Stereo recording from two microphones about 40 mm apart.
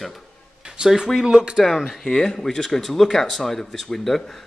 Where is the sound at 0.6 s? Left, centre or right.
Centre.